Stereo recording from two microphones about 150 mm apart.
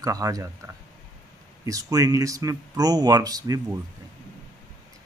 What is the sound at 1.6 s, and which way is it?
Speech, 20° right (ahead or behind).